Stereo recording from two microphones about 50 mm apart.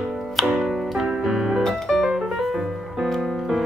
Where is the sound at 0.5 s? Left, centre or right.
Centre.